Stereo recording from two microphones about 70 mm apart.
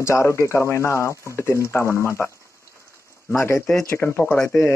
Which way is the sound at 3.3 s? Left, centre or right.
Left.